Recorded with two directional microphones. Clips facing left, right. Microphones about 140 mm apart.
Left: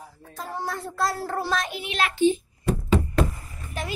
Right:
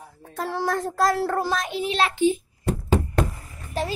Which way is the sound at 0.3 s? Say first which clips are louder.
Right 6 dB; 75° right (ahead or behind).